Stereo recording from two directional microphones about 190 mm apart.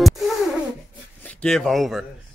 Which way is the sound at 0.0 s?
Centre (ahead or behind).